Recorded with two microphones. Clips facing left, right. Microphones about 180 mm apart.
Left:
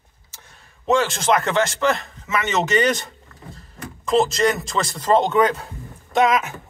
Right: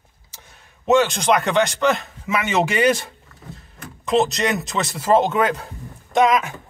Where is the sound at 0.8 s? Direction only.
Centre (ahead or behind).